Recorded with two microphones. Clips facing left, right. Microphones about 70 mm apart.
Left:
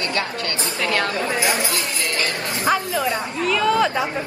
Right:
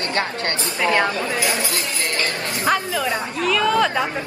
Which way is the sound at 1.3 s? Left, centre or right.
Left.